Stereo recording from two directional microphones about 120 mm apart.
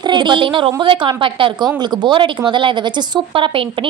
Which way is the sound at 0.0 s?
40° right (ahead or behind).